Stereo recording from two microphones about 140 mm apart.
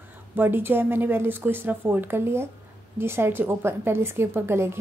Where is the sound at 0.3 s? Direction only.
15° right (ahead or behind).